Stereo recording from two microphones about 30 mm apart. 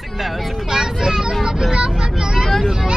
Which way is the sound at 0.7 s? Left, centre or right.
Centre.